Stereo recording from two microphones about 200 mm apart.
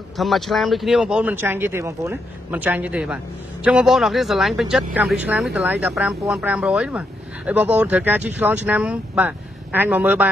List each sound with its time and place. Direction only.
0.2 s speech: centre (ahead or behind)